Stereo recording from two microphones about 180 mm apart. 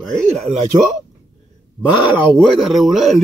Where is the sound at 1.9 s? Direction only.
25° left (ahead or behind).